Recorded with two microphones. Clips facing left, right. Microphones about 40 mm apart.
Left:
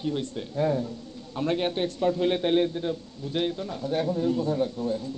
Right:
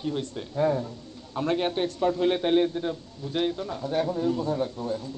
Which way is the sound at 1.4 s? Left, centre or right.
Centre.